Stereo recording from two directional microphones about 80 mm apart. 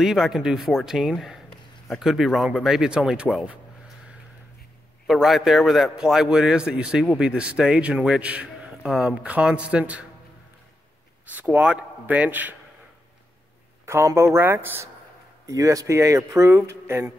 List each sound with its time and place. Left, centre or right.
0.0 s speech: centre
5.0 s a man's voice: centre
11.2 s speech: right
13.8 s speech: right
15.4 s speech: right